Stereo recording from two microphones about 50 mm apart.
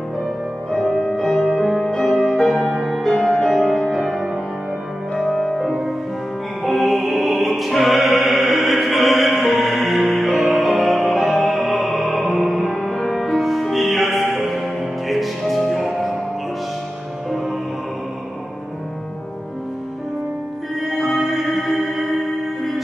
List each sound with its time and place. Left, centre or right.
0.9 s music: centre
12.7 s music: centre
20.8 s music: centre